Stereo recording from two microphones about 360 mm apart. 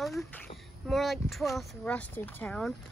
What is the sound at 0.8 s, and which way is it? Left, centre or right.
Speech, centre.